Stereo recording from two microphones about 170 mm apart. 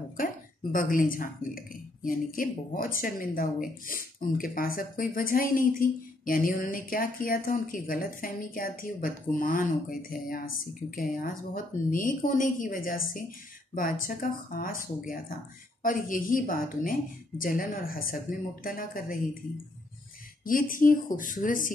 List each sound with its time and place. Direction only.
0.2 s a woman's voice: 55° left (ahead or behind)
20.4 s speech: 55° left (ahead or behind)